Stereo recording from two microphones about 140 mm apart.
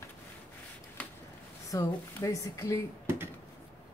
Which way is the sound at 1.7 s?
25° left (ahead or behind).